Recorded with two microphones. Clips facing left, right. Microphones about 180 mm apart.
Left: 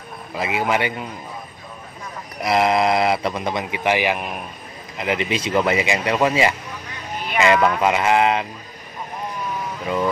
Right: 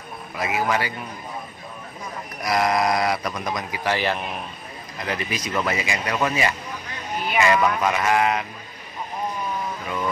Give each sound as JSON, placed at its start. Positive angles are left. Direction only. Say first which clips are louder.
{"t": 0.3, "sound": "speech", "louder": "left 2 dB", "side_deg": 25}
{"t": 2.4, "sound": "speech", "louder": "left 3 dB", "side_deg": 25}